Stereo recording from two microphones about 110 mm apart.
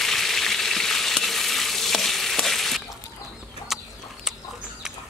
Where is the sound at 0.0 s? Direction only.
5° left (ahead or behind).